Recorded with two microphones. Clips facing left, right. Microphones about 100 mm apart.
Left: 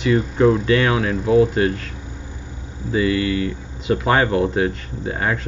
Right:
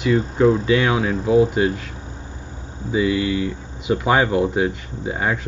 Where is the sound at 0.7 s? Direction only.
5° right (ahead or behind).